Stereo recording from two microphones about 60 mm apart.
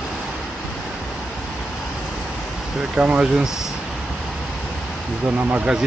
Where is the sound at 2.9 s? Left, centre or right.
Centre.